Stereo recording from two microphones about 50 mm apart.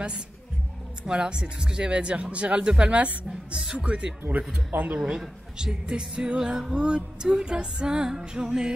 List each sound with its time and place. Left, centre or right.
1.0 s speech: centre
5.0 s speech: centre